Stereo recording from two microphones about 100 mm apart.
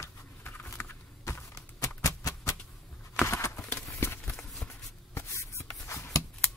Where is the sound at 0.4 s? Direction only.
20° left (ahead or behind).